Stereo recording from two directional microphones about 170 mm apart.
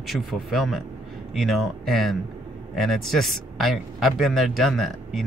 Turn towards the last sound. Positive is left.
turn(degrees=0)  # may be behind; listen again after turning